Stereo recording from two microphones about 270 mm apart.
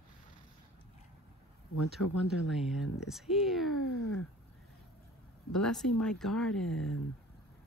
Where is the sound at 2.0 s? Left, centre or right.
Left.